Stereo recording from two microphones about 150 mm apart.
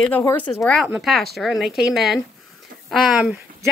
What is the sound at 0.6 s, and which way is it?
Speech, 5° left (ahead or behind).